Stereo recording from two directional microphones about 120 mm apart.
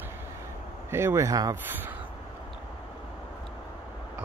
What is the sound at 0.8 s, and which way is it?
Speech, 20° right (ahead or behind).